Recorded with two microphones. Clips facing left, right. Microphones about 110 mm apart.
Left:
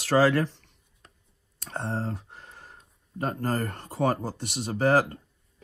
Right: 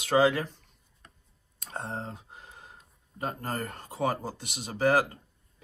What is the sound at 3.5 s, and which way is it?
Speech, 60° left (ahead or behind).